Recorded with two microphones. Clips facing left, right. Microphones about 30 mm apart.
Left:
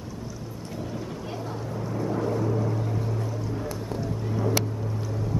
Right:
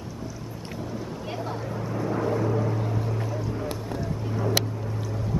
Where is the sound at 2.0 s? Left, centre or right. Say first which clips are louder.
Right 1 dB; centre.